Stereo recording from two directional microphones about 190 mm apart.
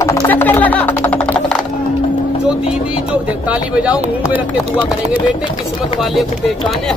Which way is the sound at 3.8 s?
10° right (ahead or behind).